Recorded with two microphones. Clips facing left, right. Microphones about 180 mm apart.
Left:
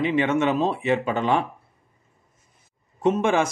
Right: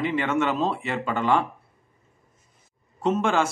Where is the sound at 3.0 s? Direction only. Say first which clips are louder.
Left 2 dB; 15° left (ahead or behind).